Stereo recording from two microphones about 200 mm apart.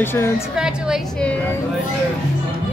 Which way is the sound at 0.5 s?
5° right (ahead or behind).